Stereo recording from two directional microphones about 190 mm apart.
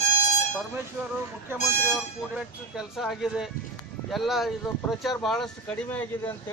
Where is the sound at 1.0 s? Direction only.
10° right (ahead or behind).